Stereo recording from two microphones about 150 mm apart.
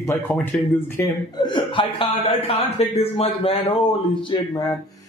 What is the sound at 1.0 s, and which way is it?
A man's voice, 30° left (ahead or behind).